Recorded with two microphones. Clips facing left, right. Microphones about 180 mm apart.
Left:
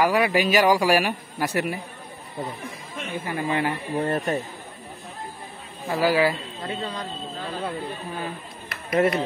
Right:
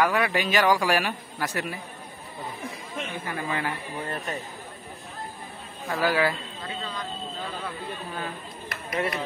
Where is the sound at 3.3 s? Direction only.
25° left (ahead or behind).